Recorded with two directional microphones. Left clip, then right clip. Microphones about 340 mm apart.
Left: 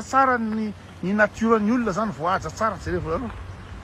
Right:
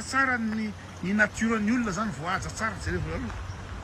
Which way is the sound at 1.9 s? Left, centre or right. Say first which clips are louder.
Left 7 dB; centre.